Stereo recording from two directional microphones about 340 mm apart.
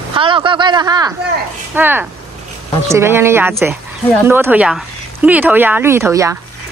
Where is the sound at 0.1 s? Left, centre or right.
Centre.